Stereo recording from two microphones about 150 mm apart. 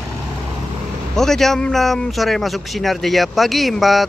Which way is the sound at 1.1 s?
5° left (ahead or behind).